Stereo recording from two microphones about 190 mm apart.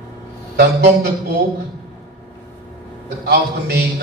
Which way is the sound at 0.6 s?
60° right (ahead or behind).